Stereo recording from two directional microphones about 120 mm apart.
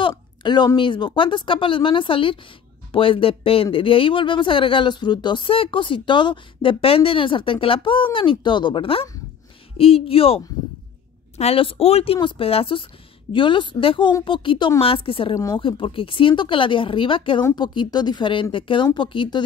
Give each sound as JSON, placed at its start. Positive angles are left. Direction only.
{"t": 0.4, "sound": "speech", "side_deg": 40}